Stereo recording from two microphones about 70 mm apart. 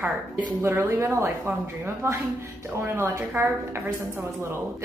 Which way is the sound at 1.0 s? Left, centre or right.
Right.